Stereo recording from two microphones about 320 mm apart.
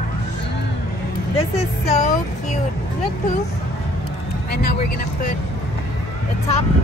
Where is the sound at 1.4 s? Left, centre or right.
Centre.